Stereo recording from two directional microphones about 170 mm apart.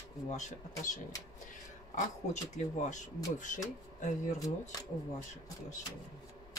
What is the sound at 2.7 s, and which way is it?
Speech, 45° left (ahead or behind).